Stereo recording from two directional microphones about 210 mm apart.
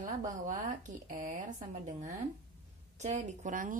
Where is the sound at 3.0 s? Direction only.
35° right (ahead or behind).